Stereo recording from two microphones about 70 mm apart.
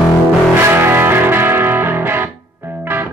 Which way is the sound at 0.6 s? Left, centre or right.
Right.